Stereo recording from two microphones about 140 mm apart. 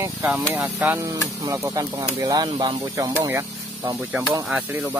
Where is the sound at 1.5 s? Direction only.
25° right (ahead or behind).